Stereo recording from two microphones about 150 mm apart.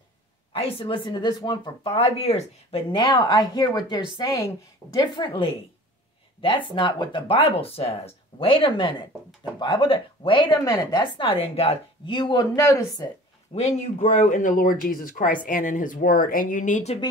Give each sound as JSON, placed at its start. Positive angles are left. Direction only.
{"t": 0.5, "sound": "speech", "side_deg": 40}
{"t": 3.0, "sound": "a woman's voice", "side_deg": 25}
{"t": 13.6, "sound": "speech", "side_deg": 50}